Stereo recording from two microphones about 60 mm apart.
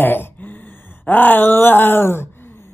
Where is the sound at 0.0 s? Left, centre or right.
Left.